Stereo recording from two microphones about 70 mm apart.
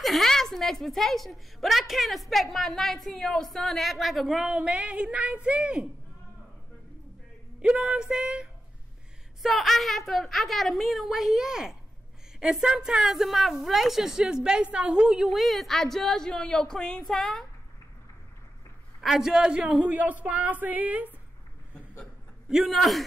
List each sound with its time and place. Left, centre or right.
0.0 s a woman's voice: centre
7.6 s speech: centre
9.4 s a woman's voice: centre
18.9 s a woman's voice: centre; by 21.1 s right
22.5 s a woman's voice: centre